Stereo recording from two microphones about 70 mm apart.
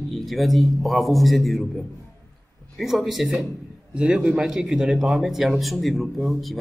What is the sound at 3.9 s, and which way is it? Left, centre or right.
A man's voice, centre.